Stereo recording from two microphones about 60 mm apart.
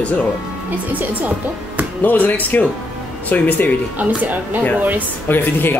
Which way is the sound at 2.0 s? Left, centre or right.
Left.